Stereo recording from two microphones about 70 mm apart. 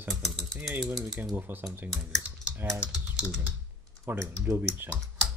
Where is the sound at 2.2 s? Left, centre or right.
Right.